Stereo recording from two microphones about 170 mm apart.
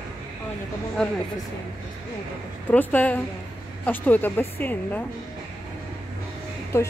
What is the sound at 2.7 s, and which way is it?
Speech, 10° left (ahead or behind).